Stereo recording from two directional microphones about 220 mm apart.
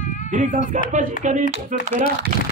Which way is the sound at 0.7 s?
35° right (ahead or behind).